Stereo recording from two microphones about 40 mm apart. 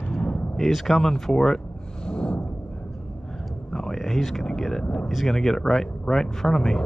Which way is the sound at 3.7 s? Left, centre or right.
Centre.